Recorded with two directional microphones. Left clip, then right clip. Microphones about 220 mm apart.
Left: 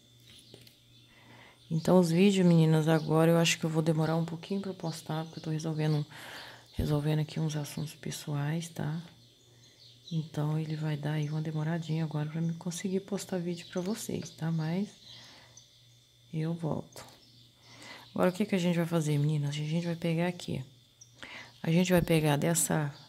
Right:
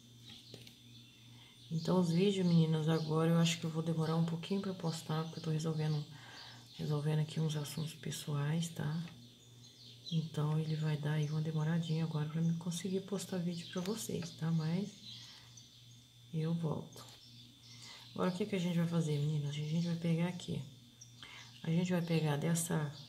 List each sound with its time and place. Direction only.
1.8 s speech: 45° left (ahead or behind)
10.3 s speech: 40° left (ahead or behind)
16.3 s speech: 40° left (ahead or behind)
18.1 s a woman's voice: 50° left (ahead or behind)